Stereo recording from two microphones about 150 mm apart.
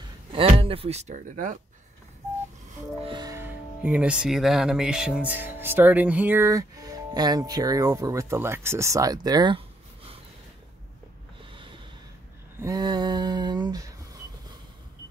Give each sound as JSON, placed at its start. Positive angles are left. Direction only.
{"t": 0.3, "sound": "speech", "side_deg": -40}
{"t": 2.7, "sound": "music", "side_deg": -40}
{"t": 3.2, "sound": "speech", "side_deg": -20}
{"t": 11.5, "sound": "snort", "side_deg": -35}
{"t": 12.5, "sound": "a sound", "side_deg": -25}